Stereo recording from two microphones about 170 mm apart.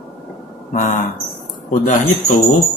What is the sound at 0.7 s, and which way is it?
Speech, 50° left (ahead or behind).